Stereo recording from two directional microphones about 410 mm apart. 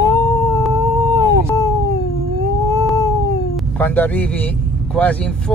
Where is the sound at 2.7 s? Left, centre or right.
Centre.